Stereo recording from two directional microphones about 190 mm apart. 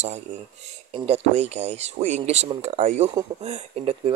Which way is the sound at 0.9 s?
35° right (ahead or behind).